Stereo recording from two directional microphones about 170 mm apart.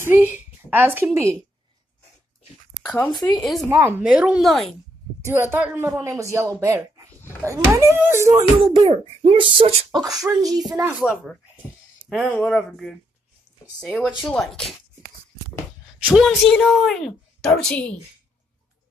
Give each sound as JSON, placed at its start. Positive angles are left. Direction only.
{"t": 0.0, "sound": "speech", "side_deg": -10}
{"t": 2.8, "sound": "speech", "side_deg": 5}
{"t": 3.6, "sound": "speech", "side_deg": -15}
{"t": 5.2, "sound": "speech", "side_deg": -15}
{"t": 8.7, "sound": "speech", "side_deg": -30}
{"t": 11.0, "sound": "speech", "side_deg": 0}
{"t": 16.1, "sound": "speech", "side_deg": 5}